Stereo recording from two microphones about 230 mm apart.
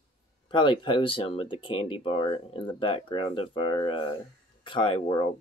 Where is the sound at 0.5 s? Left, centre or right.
Left.